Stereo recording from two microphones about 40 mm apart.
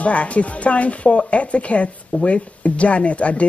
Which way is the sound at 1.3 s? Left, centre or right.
Left.